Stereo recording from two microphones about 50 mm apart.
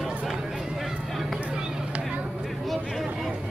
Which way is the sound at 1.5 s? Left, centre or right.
Right.